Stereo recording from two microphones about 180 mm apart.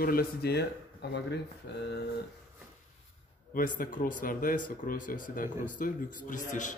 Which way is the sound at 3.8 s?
50° left (ahead or behind).